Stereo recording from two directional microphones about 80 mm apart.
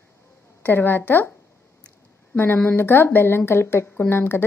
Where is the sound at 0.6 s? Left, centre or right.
Left.